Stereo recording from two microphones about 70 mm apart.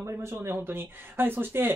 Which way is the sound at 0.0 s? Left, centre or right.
Right.